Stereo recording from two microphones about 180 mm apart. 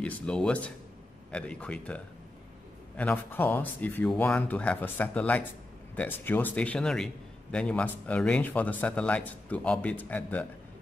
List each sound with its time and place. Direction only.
0.0 s speech: 5° left (ahead or behind)
3.0 s speech: 10° left (ahead or behind)